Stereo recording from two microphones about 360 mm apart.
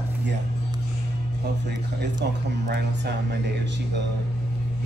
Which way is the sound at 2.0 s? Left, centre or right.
Right.